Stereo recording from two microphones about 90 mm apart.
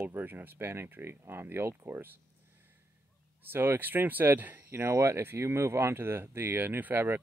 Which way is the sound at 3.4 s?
25° right (ahead or behind).